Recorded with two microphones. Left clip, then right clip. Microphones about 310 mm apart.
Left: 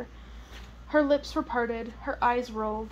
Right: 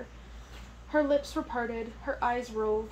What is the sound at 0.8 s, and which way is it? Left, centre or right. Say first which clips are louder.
A woman's voice: left 2 dB; centre.